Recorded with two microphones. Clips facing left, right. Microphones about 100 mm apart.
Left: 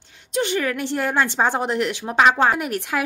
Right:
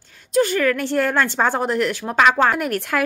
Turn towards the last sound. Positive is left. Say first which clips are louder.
# right 2 dB
turn(degrees=15)  # may be behind; listen again after turning